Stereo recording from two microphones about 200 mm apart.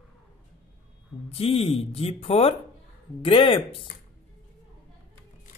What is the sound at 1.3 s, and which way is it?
Speech, 30° left (ahead or behind).